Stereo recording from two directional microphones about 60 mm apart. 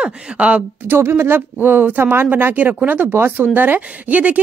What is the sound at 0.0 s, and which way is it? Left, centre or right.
Speech, centre.